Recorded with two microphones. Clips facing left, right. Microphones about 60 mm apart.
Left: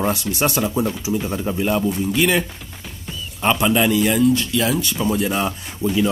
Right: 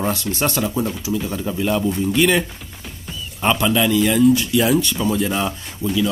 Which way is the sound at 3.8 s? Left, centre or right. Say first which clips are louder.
Even; centre.